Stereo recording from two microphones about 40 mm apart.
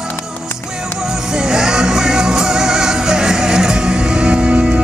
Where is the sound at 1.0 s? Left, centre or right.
Centre.